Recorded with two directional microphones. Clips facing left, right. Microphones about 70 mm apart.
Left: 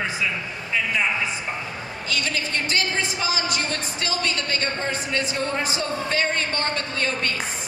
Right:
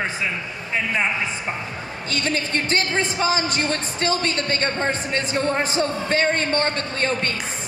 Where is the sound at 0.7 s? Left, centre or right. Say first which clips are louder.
Right 1 dB; right.